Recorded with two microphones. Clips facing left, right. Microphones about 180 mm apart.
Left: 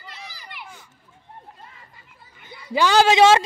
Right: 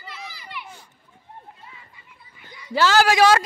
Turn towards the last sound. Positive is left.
turn(degrees=25)  # may be behind; listen again after turning